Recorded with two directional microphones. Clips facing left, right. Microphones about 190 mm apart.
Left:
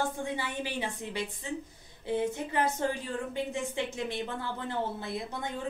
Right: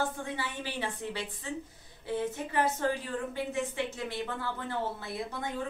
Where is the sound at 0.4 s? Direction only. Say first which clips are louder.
Left 2 dB; 15° left (ahead or behind).